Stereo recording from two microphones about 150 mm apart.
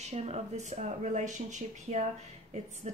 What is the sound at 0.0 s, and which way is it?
Speech, 45° right (ahead or behind).